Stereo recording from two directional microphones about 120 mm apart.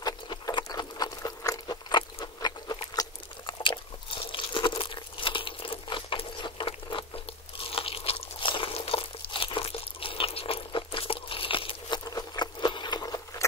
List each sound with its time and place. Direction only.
0.0 s a sound: 35° left (ahead or behind)
2.4 s biting: 35° left (ahead or behind)
4.1 s crumpling: 45° left (ahead or behind)
7.5 s crunch: 50° left (ahead or behind)
12.0 s patter: 30° left (ahead or behind)